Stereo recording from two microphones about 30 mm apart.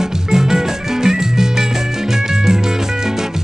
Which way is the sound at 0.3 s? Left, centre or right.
Centre.